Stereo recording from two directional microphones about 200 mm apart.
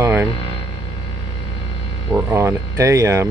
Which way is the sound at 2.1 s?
15° right (ahead or behind).